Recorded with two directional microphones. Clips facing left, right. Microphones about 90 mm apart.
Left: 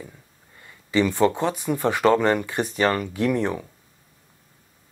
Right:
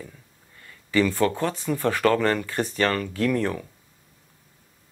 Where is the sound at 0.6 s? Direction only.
20° left (ahead or behind).